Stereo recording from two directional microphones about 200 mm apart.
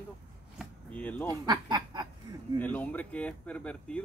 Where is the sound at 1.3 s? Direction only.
20° right (ahead or behind).